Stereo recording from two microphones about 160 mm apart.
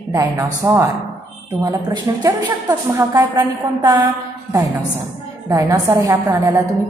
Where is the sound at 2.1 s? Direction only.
20° right (ahead or behind).